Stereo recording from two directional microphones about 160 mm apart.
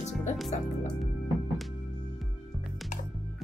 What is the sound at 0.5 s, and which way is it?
Speech, 50° left (ahead or behind).